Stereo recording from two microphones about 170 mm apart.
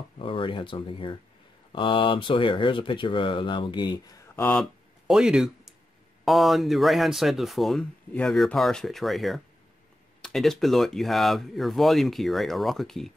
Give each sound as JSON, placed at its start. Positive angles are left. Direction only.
{"t": 0.2, "sound": "speech", "side_deg": 30}
{"t": 4.4, "sound": "speech", "side_deg": 5}